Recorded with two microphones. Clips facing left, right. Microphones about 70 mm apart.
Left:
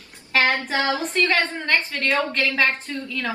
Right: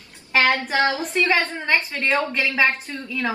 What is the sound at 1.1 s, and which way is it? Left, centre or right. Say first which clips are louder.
A woman's voice: even; centre.